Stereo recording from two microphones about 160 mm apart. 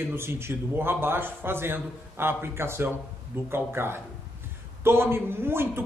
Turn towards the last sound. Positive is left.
turn(degrees=-15)  # may be behind; listen again after turning